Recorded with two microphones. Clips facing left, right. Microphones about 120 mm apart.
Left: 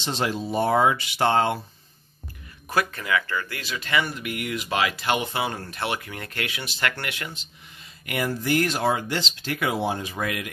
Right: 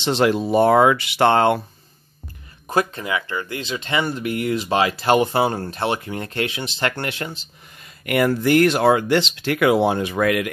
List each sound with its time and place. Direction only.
0.0 s speech: 70° right (ahead or behind)
2.7 s speech: 25° right (ahead or behind)
8.0 s speech: 65° right (ahead or behind)